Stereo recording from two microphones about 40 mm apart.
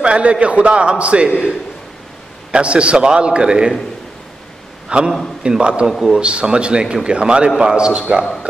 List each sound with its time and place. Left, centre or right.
0.0 s a man's voice: right
2.5 s a man's voice: right
4.8 s a man's voice: centre
5.9 s a man's voice: centre
6.1 s a man's voice: right